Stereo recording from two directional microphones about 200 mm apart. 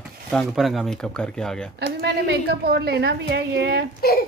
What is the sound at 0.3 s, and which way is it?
Speech, centre (ahead or behind).